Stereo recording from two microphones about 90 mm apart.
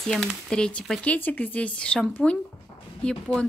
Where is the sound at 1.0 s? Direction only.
15° left (ahead or behind).